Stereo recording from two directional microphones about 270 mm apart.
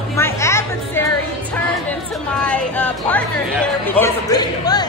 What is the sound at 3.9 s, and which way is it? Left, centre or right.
A man's voice, centre.